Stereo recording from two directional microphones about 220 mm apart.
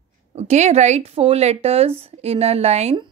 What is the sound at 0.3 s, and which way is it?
Speech, 30° right (ahead or behind).